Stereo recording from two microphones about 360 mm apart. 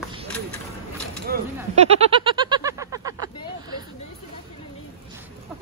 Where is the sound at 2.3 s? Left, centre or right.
Centre.